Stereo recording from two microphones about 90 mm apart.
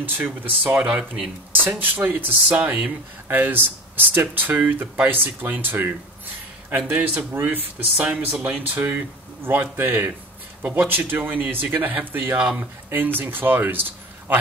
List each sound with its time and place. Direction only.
0.1 s speech: 20° right (ahead or behind)
12.4 s speech: 10° right (ahead or behind)
13.2 s speech: 25° right (ahead or behind)